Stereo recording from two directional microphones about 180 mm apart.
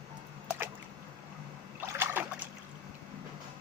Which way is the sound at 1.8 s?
10° right (ahead or behind).